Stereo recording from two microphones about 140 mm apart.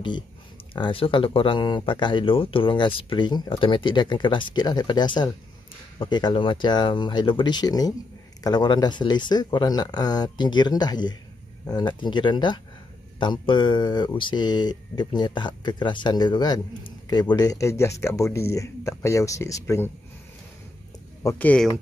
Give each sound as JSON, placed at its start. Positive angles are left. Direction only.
{"t": 0.7, "sound": "speech", "side_deg": 35}
{"t": 21.2, "sound": "speech", "side_deg": 20}